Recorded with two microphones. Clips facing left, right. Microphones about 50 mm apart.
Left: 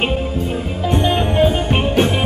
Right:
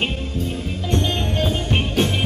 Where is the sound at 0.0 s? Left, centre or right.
Centre.